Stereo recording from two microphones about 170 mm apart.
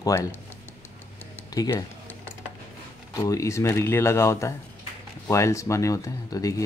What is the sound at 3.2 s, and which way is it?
Speech, 20° left (ahead or behind).